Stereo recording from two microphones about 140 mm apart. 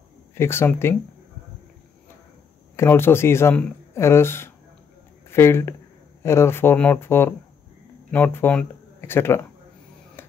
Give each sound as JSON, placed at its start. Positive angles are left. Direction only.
{"t": 0.3, "sound": "speech", "side_deg": 15}
{"t": 2.7, "sound": "speech", "side_deg": 20}